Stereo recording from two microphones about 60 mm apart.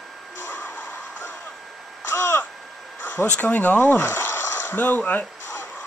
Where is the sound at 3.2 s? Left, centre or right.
Left.